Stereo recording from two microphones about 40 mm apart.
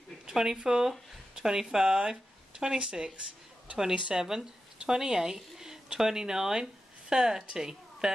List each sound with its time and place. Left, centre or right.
0.3 s speech: centre